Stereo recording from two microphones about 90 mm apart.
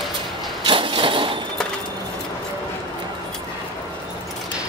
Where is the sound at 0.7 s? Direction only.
70° right (ahead or behind).